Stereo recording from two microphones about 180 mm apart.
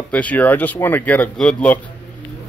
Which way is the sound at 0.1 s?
10° left (ahead or behind).